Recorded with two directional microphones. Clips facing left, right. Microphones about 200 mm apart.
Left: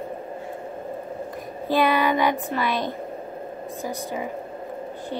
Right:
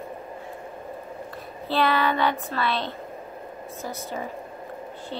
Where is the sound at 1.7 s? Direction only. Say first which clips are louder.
Left 3 dB; 15° left (ahead or behind).